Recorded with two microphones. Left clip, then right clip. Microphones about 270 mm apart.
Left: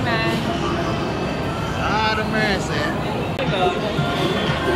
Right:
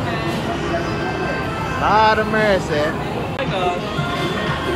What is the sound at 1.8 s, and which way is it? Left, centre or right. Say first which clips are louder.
Speech: right 7 dB; centre.